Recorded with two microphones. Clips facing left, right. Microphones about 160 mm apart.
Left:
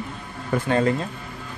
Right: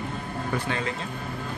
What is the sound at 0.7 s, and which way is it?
Speech, 45° left (ahead or behind).